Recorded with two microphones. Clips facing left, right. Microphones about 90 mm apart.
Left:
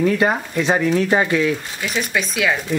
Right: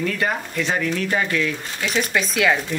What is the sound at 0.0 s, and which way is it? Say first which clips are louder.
Speech: left 6 dB; 25° left (ahead or behind).